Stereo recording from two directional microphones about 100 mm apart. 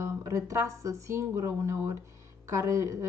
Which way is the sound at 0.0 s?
30° right (ahead or behind).